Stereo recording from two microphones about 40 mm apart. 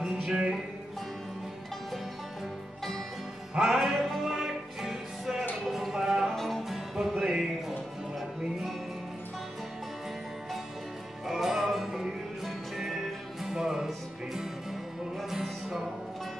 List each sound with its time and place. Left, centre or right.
0.2 s music: right
3.6 s music: centre
5.7 s a sound: centre
6.3 s music: centre
7.0 s music: centre
11.2 s music: centre